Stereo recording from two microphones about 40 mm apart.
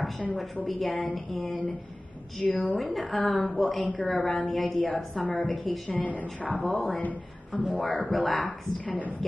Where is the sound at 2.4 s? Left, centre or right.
Centre.